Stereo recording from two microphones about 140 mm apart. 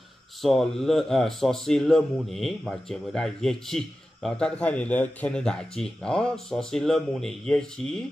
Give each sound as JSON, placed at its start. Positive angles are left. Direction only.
{"t": 0.4, "sound": "a man's voice", "side_deg": 0}